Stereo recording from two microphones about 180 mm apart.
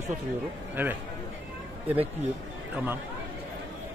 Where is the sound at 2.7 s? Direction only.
10° right (ahead or behind).